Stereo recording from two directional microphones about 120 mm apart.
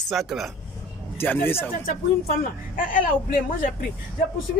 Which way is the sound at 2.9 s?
90° left.